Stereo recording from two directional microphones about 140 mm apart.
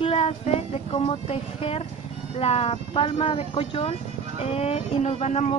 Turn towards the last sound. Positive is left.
turn(degrees=50)  # may be behind; listen again after turning